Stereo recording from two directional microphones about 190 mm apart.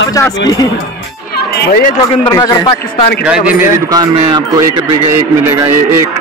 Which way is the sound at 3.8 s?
20° right (ahead or behind).